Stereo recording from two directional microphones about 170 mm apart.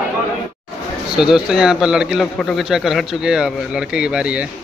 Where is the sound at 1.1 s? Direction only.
5° right (ahead or behind).